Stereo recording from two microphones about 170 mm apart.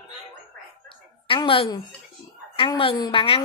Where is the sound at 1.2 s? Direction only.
30° left (ahead or behind).